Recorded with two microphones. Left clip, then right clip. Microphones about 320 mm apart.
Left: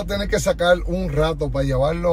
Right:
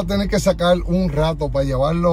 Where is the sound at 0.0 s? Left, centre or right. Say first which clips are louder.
Right 2 dB; centre.